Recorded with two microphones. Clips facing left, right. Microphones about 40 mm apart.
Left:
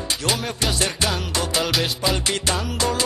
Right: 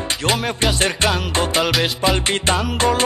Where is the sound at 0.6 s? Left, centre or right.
Right.